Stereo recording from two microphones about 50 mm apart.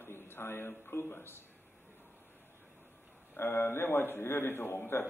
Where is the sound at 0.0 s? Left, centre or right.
Left.